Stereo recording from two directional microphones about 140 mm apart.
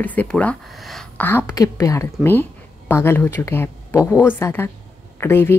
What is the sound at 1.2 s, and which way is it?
A woman's voice, 15° left (ahead or behind).